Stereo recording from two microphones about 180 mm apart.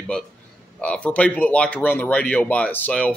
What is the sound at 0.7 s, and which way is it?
Speech, 5° left (ahead or behind).